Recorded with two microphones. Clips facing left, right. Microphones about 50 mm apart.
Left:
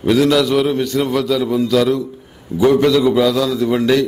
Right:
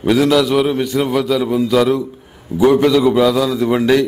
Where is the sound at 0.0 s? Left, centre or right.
Centre.